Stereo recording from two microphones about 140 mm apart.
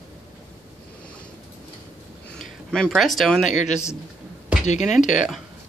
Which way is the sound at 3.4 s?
55° left (ahead or behind).